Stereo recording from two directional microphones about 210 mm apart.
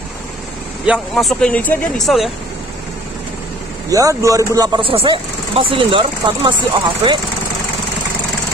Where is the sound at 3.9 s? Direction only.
15° right (ahead or behind).